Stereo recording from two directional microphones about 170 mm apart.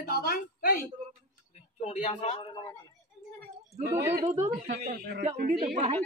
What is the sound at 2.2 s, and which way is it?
Speech, 30° left (ahead or behind).